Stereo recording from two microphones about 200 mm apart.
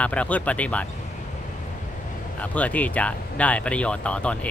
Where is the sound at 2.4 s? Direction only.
5° left (ahead or behind).